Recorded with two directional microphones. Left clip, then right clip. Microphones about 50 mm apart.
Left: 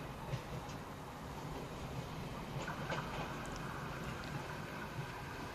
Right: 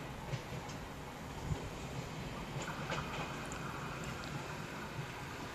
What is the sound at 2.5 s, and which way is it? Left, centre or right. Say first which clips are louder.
Train: right 1 dB; centre.